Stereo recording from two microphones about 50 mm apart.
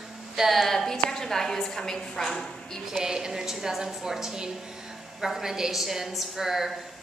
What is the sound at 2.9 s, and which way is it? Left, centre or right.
A woman's voice, centre.